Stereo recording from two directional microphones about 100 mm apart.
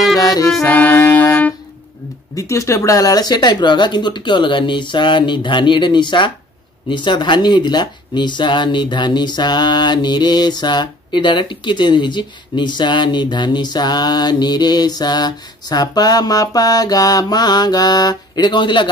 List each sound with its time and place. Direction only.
0.2 s music: 35° left (ahead or behind)
2.3 s speech: 30° left (ahead or behind); by 18.9 s 55° left (ahead or behind)